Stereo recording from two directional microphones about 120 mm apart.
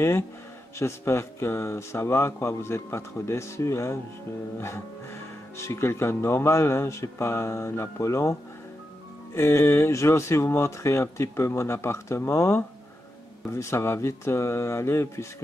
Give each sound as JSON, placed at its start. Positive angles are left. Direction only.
{"t": 0.7, "sound": "speech", "side_deg": 20}